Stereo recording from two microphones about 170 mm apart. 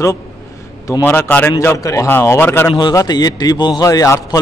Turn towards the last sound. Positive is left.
turn(degrees=20)  # may be behind; listen again after turning